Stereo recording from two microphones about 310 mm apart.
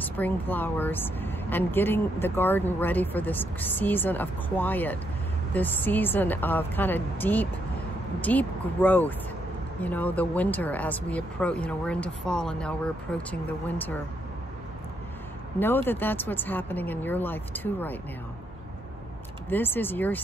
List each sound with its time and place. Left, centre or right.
0.0 s speech: centre
15.6 s speech: centre
19.5 s speech: centre